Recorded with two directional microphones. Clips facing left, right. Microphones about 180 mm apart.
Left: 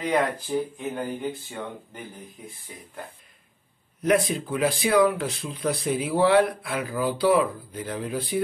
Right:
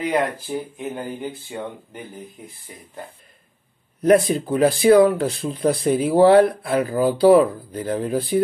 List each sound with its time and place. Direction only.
0.6 s speech: 5° right (ahead or behind)
4.0 s speech: 35° right (ahead or behind)